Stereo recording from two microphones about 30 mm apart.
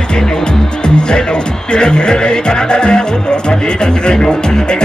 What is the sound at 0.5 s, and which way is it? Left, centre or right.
Speech, left.